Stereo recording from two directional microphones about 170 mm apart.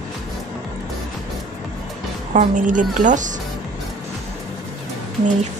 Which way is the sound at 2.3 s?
50° right (ahead or behind).